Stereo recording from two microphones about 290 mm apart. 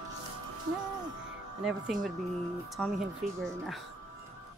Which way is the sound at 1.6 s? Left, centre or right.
Centre.